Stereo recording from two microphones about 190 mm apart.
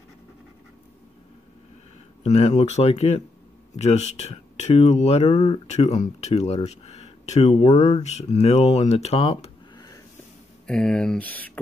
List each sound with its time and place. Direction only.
2.2 s speech: 35° left (ahead or behind)
10.7 s speech: 5° left (ahead or behind)